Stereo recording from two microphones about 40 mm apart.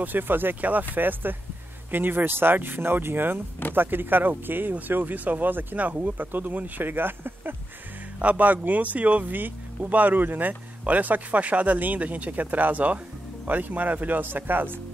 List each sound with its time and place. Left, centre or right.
0.0 s speech: right
0.6 s speech: right
0.9 s speech: right
5.8 s speech: right
6.9 s speech: right
8.2 s speech: right